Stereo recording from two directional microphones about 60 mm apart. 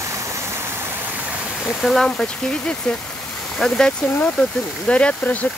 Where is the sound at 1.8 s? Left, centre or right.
Centre.